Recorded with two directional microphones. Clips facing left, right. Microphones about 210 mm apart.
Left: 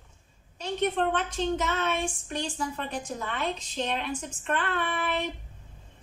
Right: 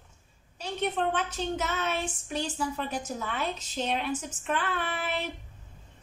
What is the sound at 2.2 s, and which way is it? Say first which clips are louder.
A woman's voice: right 1 dB; 5° right (ahead or behind).